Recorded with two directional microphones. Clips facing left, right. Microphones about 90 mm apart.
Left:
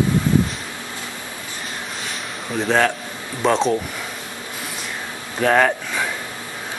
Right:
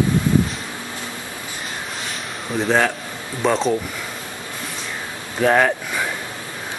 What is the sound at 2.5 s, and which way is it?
Speech, centre (ahead or behind).